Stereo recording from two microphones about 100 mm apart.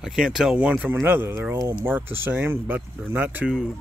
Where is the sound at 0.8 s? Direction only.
20° right (ahead or behind).